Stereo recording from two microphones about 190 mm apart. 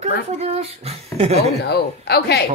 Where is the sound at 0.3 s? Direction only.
35° right (ahead or behind).